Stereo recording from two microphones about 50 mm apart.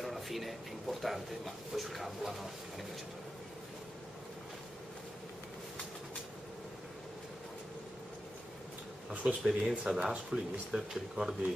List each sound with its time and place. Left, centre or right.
0.0 s a man's voice: centre
9.1 s speech: right
9.4 s speech: centre
10.1 s speech: right
10.7 s speech: centre